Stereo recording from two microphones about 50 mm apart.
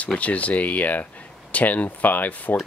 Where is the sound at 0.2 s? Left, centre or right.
Left.